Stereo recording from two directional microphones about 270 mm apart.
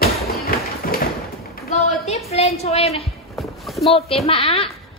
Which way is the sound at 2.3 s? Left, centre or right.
Left.